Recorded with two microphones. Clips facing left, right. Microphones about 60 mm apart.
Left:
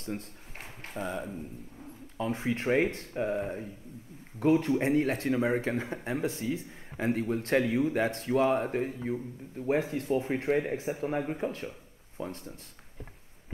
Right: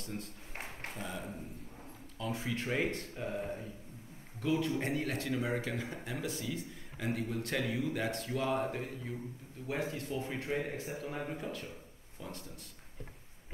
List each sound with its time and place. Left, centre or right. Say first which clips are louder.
0.0 s speech: left 5 dB; left